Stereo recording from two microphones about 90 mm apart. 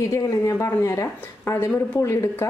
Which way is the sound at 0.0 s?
35° left (ahead or behind).